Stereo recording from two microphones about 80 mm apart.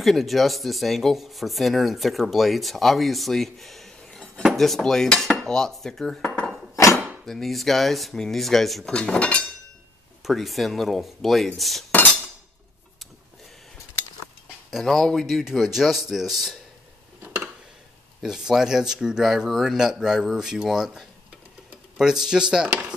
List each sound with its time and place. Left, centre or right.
0.0 s speech: centre
6.7 s cutlery: left
7.2 s speech: centre
8.9 s cutlery: centre
10.2 s speech: centre
14.7 s speech: centre
17.2 s a sound: centre
18.2 s speech: centre